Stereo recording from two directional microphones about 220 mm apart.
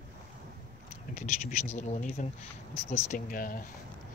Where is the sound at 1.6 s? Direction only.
30° left (ahead or behind).